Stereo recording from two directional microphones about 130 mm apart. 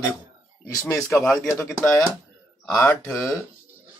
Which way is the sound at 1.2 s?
5° left (ahead or behind).